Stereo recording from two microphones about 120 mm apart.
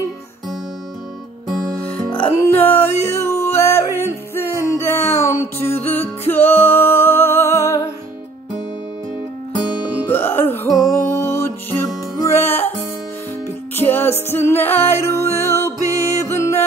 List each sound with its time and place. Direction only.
2.2 s music: 20° left (ahead or behind)
10.1 s music: 20° left (ahead or behind)
13.7 s music: 20° left (ahead or behind)